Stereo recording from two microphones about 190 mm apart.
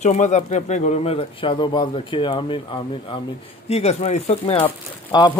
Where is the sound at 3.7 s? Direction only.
35° left (ahead or behind).